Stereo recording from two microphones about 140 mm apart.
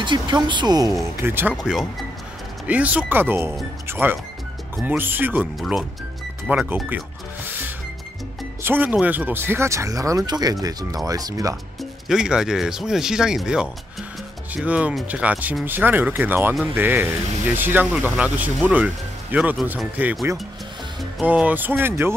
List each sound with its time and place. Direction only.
0.0 s speech: 35° right (ahead or behind)
1.2 s speech: 15° right (ahead or behind)
1.5 s speech: centre (ahead or behind)
5.6 s speech: centre (ahead or behind)
6.5 s speech: 10° right (ahead or behind)
7.4 s music: 15° right (ahead or behind)
8.6 s speech: 15° right (ahead or behind)
11.8 s speech: 5° right (ahead or behind)
19.5 s speech: 5° right (ahead or behind)
21.2 s speech: 10° right (ahead or behind)